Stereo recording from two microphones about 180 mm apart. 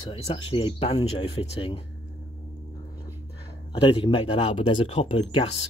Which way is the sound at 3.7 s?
25° left (ahead or behind).